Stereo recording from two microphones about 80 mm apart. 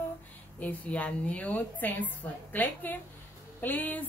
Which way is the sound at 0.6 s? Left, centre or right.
Centre.